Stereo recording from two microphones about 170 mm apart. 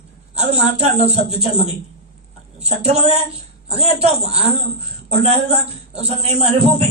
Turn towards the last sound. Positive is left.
turn(degrees=-35)  # may be behind; listen again after turning